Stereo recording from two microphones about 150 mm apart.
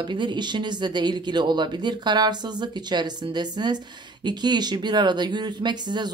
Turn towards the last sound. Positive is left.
turn(degrees=-30)  # may be behind; listen again after turning